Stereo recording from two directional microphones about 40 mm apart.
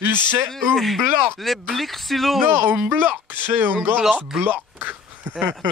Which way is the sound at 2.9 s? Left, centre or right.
Right.